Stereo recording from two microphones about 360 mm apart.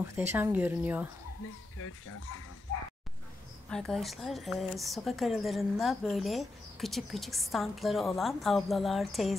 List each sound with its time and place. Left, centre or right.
0.3 s speech: centre
1.8 s speech: left
3.6 s speech: centre